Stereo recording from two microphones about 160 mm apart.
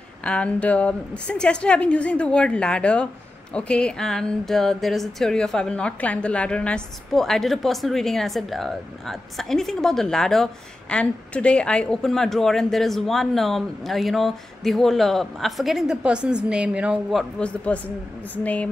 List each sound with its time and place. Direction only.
0.2 s a woman's voice: 5° left (ahead or behind)
17.4 s a woman's voice: 5° left (ahead or behind)